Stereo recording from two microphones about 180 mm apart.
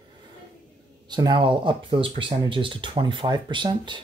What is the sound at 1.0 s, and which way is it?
Speech, 25° right (ahead or behind).